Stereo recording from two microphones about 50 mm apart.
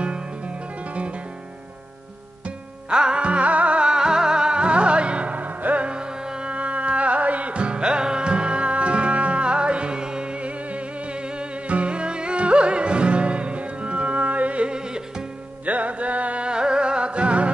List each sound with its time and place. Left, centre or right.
0.0 s music: right
2.4 s music: centre
15.6 s music: right